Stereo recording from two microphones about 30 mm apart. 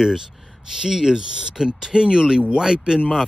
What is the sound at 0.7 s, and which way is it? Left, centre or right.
Speech, centre.